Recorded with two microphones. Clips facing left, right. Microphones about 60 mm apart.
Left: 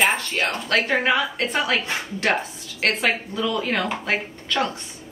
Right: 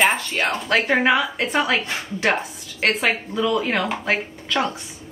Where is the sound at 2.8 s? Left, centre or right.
Centre.